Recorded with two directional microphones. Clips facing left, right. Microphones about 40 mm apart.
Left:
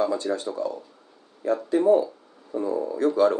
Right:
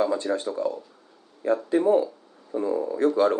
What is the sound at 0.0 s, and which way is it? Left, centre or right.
Speech, centre.